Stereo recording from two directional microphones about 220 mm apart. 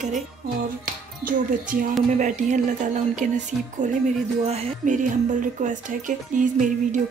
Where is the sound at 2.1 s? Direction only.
35° right (ahead or behind).